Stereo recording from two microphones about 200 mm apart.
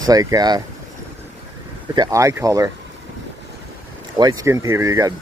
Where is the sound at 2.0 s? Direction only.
15° right (ahead or behind).